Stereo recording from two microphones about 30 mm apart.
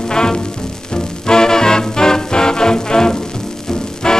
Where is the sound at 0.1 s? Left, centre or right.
Left.